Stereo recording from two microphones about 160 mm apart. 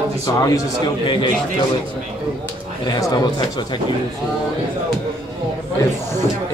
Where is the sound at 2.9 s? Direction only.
25° left (ahead or behind).